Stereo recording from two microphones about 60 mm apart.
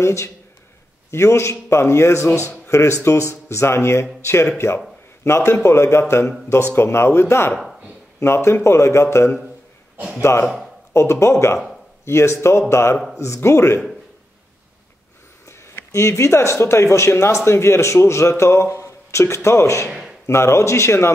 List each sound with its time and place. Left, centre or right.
0.0 s speech: left
10.4 s speech: centre
10.9 s speech: left
15.4 s a man's voice: left
19.9 s a sound: centre
20.2 s speech: left